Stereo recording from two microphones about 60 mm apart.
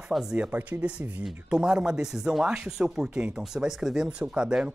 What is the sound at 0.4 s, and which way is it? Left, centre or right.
Speech, right.